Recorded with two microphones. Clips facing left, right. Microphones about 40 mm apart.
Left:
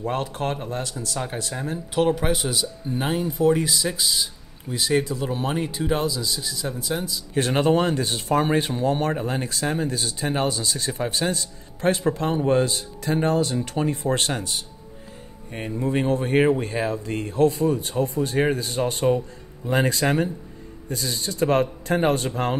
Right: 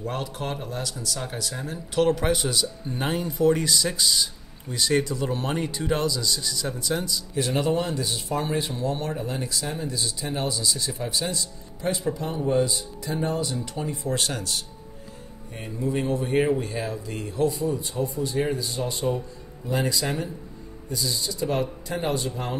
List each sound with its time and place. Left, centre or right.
0.0 s speech: left
2.0 s speech: centre
7.3 s speech: left
15.8 s speech: left